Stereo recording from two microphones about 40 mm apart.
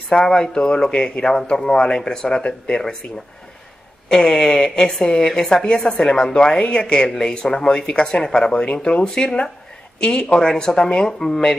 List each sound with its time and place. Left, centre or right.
0.1 s speech: centre
0.9 s a woman's voice: left
1.2 s a woman's voice: centre
4.1 s a woman's voice: centre